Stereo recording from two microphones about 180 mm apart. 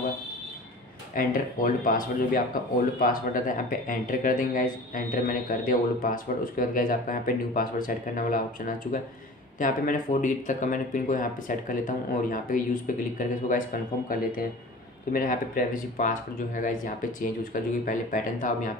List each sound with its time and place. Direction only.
1.1 s speech: 50° left (ahead or behind)
15.1 s speech: 50° left (ahead or behind)